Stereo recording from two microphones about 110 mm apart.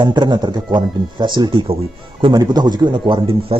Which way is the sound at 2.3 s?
40° right (ahead or behind).